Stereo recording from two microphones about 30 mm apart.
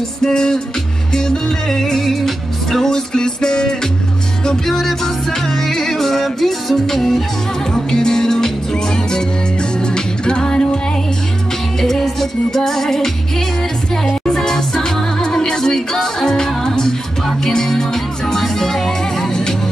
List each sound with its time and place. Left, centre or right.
0.2 s music: left; by 2.9 s centre
2.9 s music: left
4.5 s music: centre
7.7 s music: left
11.8 s music: centre
14.2 s music: left